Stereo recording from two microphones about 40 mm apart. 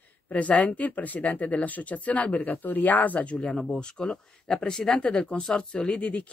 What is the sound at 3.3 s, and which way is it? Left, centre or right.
Speech, centre.